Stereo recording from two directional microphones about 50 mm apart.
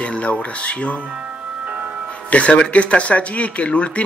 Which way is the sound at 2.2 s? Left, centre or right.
Left.